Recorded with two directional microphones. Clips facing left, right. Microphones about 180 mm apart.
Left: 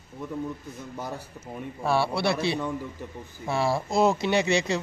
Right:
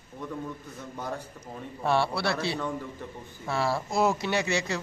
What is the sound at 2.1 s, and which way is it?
Speech, 20° left (ahead or behind).